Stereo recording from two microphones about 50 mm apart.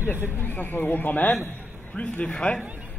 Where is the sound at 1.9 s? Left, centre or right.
Left.